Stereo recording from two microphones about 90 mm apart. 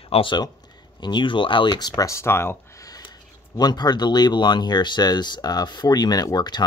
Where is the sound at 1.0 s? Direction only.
60° left (ahead or behind).